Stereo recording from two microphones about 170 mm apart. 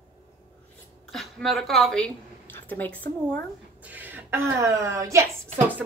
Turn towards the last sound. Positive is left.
turn(degrees=-15)  # may be behind; listen again after turning